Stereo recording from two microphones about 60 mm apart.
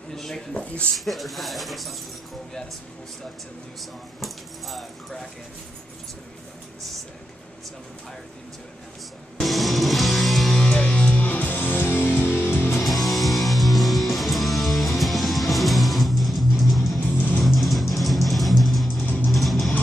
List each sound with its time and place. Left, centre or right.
0.1 s speech: centre
0.6 s speech: centre
0.9 s speech: centre
4.2 s speech: centre
9.4 s music: centre
10.7 s music: centre; by 12.8 s left
12.8 s music: centre
18.9 s music: left
19.2 s music: centre